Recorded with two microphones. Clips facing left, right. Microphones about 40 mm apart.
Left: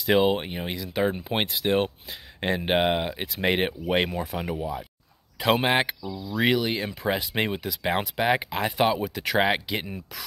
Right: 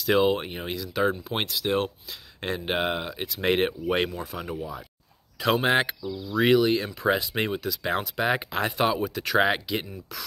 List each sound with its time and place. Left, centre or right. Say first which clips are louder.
0.0 s speech: left 1 dB; centre
3.4 s speech: right 1 dB; centre
4.2 s speech: left 3 dB; left